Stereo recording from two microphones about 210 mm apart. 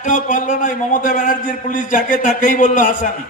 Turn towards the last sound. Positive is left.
turn(degrees=40)  # may be behind; listen again after turning